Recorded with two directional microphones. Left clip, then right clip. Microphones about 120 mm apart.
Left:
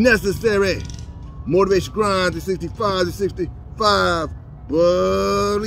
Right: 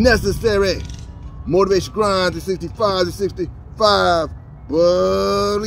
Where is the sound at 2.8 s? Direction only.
40° left (ahead or behind).